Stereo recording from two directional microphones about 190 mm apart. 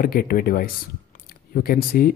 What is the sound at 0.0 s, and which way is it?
Speech, 50° left (ahead or behind).